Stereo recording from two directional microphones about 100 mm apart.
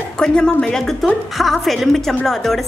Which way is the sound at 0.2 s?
5° left (ahead or behind).